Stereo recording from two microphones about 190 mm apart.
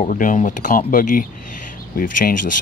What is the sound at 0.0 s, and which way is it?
Speech, 45° left (ahead or behind).